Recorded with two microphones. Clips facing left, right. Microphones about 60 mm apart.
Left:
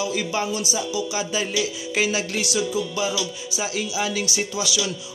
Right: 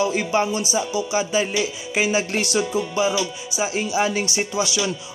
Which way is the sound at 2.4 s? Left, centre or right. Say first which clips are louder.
Right 2 dB; right.